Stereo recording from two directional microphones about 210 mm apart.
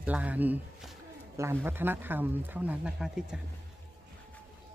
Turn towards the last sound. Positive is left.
turn(degrees=-5)  # may be behind; listen again after turning